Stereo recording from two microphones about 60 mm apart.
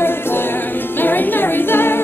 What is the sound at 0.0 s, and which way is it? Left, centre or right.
Music, left.